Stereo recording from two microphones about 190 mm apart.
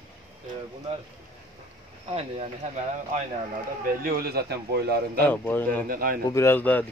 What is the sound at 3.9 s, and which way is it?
A man's voice, 50° right (ahead or behind).